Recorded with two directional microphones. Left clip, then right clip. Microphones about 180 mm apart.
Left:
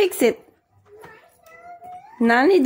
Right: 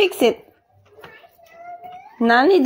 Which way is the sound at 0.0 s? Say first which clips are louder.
Right 2 dB; 15° left (ahead or behind).